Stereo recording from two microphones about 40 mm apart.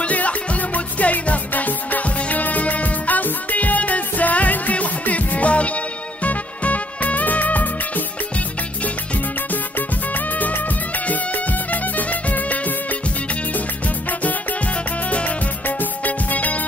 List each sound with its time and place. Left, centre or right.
0.0 s music: left
11.7 s music: left
15.0 s music: left
15.8 s music: left